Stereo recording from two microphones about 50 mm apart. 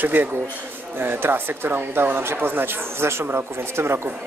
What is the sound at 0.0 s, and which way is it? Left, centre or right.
Speech, right.